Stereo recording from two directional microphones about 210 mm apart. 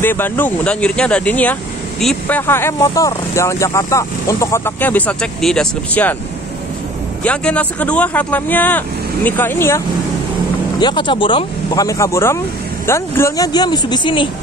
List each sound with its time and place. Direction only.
0.0 s speech: 10° left (ahead or behind)
7.2 s speech: 5° left (ahead or behind)
10.8 s speech: 20° left (ahead or behind)